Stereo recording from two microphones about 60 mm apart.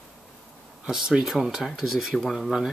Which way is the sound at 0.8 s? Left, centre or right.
Centre.